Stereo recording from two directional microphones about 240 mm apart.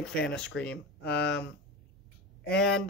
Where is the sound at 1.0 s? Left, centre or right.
Left.